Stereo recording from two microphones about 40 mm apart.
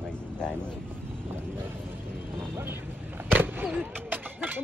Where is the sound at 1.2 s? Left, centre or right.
Right.